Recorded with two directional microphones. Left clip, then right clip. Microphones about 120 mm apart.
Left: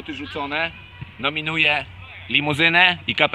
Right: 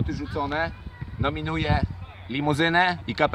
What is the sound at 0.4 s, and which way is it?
Speech, 10° left (ahead or behind).